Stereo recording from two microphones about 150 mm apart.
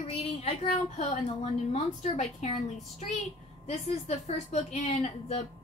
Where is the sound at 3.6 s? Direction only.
45° left (ahead or behind).